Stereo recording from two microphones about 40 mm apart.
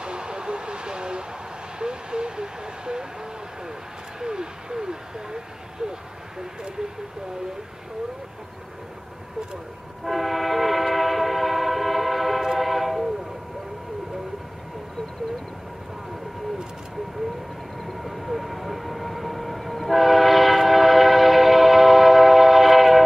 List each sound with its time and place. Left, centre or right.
0.0 s vehicle: right
4.2 s a sound: centre
10.0 s train: centre
17.7 s train: centre